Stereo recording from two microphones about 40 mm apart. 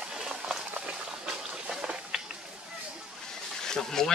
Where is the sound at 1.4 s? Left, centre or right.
Centre.